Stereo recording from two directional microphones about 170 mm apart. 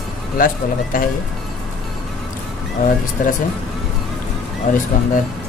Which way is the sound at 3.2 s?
50° left (ahead or behind).